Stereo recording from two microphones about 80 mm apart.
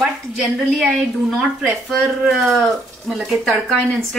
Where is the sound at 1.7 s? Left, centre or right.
Centre.